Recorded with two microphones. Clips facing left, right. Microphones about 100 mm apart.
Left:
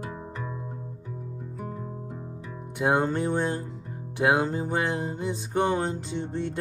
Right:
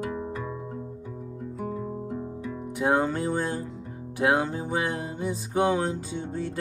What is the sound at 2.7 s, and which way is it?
Music, 5° right (ahead or behind).